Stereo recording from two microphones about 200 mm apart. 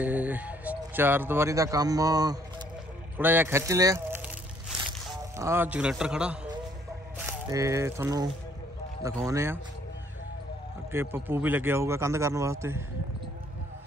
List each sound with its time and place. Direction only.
0.0 s speech: 10° right (ahead or behind)
5.4 s a man's voice: 10° right (ahead or behind)
10.9 s speech: 10° right (ahead or behind)